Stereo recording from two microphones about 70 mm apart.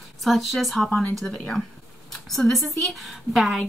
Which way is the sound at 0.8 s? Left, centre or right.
Left.